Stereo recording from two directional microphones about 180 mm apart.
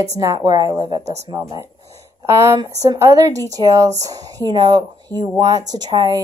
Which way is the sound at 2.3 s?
15° right (ahead or behind).